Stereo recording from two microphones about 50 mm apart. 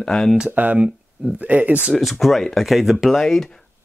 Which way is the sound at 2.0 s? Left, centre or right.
Centre.